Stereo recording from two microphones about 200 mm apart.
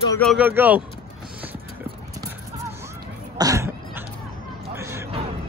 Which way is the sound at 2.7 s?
15° right (ahead or behind).